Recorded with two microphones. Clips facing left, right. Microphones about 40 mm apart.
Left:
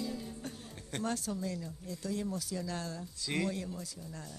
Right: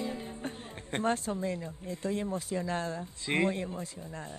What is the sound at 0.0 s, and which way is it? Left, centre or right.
Speech, right.